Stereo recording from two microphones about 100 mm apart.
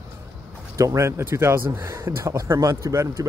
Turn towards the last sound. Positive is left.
turn(degrees=-30)  # may be behind; listen again after turning